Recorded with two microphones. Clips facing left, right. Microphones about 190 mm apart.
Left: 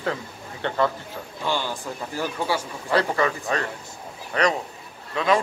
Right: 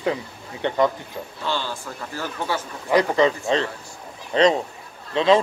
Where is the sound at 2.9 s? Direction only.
15° right (ahead or behind).